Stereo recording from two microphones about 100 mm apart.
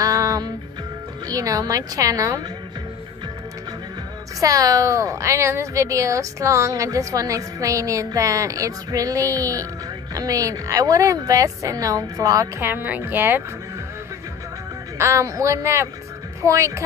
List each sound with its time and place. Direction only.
0.0 s music: 35° right (ahead or behind)
1.3 s a woman's voice: 35° right (ahead or behind)
4.4 s a woman's voice: 35° right (ahead or behind)
12.6 s speech: 20° right (ahead or behind)
15.0 s a woman's voice: 30° right (ahead or behind)